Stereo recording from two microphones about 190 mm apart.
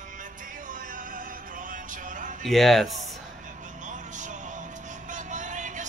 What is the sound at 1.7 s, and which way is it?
Vehicle, 40° right (ahead or behind).